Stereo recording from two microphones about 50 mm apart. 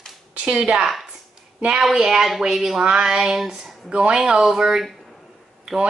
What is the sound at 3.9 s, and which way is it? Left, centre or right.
Speech, centre.